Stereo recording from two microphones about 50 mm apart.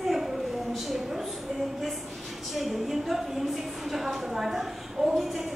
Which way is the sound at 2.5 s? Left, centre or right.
Centre.